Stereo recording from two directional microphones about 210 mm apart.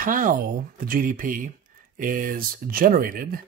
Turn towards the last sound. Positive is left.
turn(degrees=-40)  # may be behind; listen again after turning